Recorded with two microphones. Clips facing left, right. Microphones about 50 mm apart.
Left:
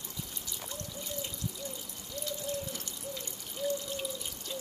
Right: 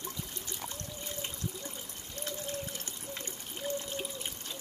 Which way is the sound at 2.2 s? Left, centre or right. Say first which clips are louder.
Left 2 dB; right.